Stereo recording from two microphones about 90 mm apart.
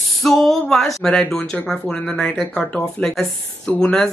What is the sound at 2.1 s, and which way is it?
Speech, 20° left (ahead or behind).